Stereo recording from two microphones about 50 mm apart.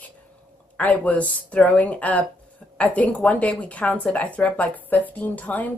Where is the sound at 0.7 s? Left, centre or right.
Left.